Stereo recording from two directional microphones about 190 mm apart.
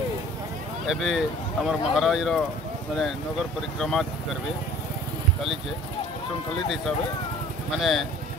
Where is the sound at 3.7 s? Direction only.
Centre (ahead or behind).